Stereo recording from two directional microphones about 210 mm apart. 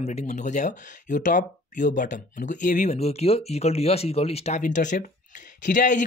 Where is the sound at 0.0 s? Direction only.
35° left (ahead or behind).